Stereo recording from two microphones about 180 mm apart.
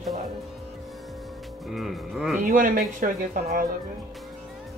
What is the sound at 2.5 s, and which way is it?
Speech, 50° right (ahead or behind).